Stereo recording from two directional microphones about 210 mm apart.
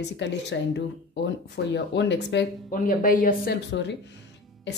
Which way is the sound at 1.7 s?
55° left (ahead or behind).